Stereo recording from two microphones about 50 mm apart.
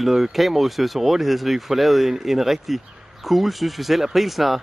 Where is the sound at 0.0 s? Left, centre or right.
Centre.